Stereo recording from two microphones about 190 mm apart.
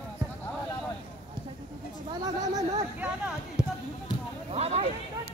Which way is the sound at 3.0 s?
5° right (ahead or behind).